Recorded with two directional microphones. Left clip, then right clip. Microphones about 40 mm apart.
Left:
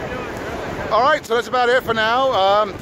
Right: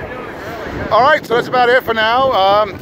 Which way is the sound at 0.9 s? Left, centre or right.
Right.